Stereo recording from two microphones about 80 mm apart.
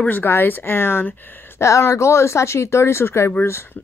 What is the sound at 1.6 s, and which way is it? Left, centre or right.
A woman's voice, left.